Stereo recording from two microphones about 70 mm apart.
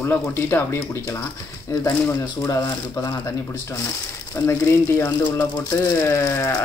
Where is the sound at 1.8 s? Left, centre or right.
Left.